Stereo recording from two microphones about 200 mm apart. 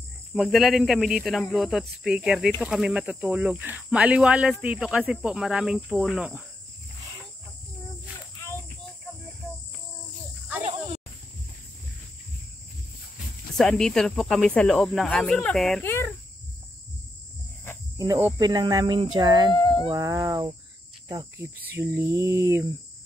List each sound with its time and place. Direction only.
0.3 s speech: centre (ahead or behind)
13.6 s speech: centre (ahead or behind)
17.9 s speech: 15° right (ahead or behind)
19.8 s a sound: 20° right (ahead or behind)
21.1 s speech: 20° right (ahead or behind)
21.6 s a sound: 5° right (ahead or behind)